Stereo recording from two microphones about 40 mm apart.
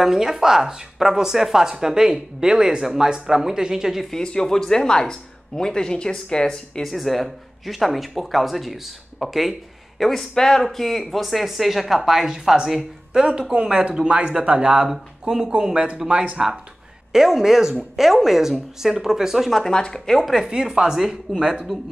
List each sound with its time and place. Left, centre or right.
0.0 s speech: centre
4.1 s speech: centre
6.8 s speech: centre
10.3 s speech: centre
13.1 s speech: right
14.9 s speech: centre
15.6 s speech: right; by 19.6 s centre
19.7 s speech: left
20.2 s speech: centre
20.4 s speech: centre